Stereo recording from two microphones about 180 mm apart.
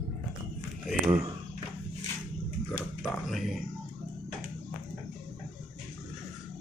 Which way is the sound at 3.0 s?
Centre (ahead or behind).